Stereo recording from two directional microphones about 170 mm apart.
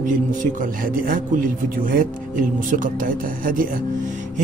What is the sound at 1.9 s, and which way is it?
Speech, 55° right (ahead or behind).